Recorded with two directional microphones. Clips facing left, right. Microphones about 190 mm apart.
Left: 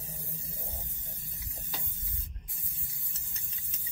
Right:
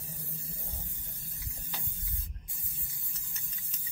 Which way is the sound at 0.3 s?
20° left (ahead or behind).